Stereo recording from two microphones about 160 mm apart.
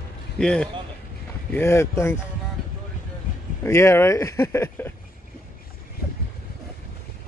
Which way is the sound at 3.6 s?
15° left (ahead or behind).